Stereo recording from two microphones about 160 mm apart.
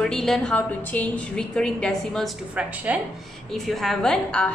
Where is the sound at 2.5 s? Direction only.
10° right (ahead or behind).